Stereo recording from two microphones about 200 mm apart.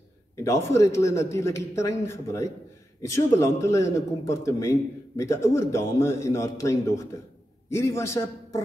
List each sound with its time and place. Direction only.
0.4 s a man's voice: 15° left (ahead or behind)